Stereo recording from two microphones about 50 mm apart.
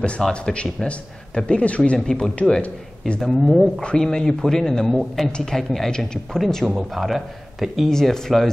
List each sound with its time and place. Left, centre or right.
0.3 s speech: centre
2.0 s speech: centre
3.3 s a man's voice: centre
3.8 s speech: centre
6.6 s a man's voice: centre
7.9 s speech: centre